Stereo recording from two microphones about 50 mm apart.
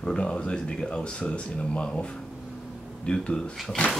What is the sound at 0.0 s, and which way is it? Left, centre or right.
Speech, centre.